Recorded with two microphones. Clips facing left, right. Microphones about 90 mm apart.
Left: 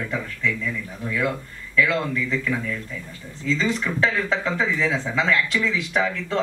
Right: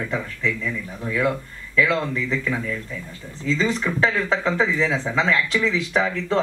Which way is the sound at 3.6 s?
30° right (ahead or behind).